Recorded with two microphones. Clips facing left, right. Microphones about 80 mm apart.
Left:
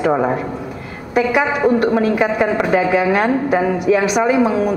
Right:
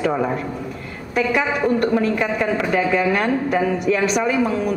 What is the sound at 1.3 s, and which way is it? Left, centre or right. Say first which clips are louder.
A man's voice: left 4 dB; centre.